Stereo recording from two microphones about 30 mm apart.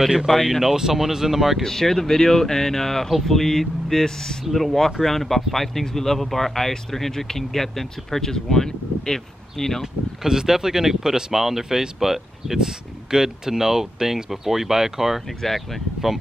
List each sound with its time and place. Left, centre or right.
0.5 s speech: centre
1.6 s speech: centre
4.5 s speech: centre
10.2 s speech: centre
15.2 s speech: centre